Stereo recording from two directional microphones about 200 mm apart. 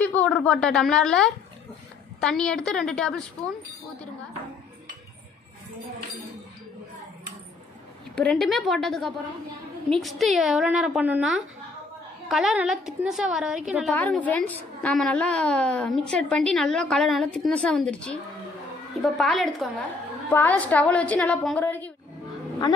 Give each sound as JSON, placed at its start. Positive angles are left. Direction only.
{"t": 0.0, "sound": "a woman's voice", "side_deg": 5}
{"t": 8.2, "sound": "a woman's voice", "side_deg": 0}
{"t": 13.9, "sound": "a woman's voice", "side_deg": 10}